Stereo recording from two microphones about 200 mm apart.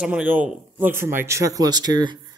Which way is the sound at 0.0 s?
5° right (ahead or behind).